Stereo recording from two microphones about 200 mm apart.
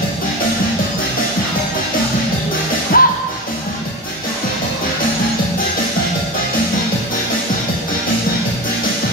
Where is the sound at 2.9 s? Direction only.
45° left (ahead or behind).